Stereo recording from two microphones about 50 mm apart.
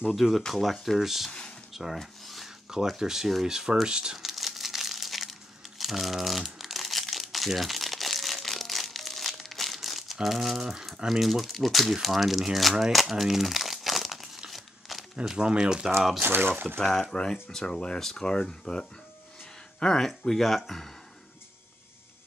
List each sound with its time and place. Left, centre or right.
0.1 s speech: centre
1.7 s rub: centre
3.0 s speech: centre
4.2 s crumpling: centre
10.2 s speech: centre
12.9 s crumpling: centre
15.3 s speech: centre
16.2 s speech: right
16.8 s speech: centre